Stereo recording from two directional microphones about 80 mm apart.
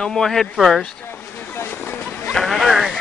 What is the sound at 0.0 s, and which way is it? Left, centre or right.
Speech, centre.